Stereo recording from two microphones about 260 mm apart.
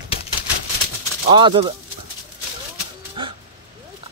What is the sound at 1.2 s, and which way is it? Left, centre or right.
Speech, centre.